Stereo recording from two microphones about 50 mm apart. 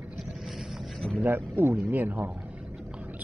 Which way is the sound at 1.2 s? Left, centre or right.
Right.